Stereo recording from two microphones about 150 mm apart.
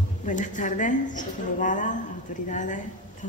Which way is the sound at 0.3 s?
55° left (ahead or behind).